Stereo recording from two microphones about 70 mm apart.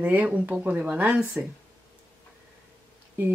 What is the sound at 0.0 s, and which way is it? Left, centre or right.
Speech, right.